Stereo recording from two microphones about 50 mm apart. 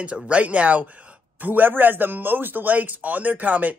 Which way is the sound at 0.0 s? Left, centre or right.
Right.